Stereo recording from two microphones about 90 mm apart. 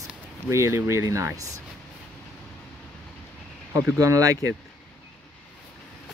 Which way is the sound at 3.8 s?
40° right (ahead or behind).